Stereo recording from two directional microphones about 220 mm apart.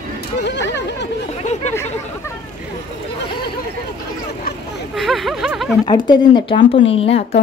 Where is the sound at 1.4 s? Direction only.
30° left (ahead or behind).